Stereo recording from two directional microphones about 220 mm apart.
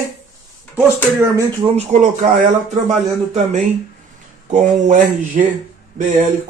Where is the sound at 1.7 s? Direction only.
30° right (ahead or behind).